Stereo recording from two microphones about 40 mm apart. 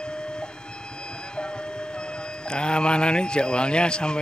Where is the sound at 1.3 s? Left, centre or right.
Left.